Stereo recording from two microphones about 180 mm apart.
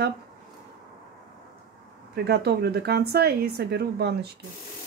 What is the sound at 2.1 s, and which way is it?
Speech, 65° right (ahead or behind).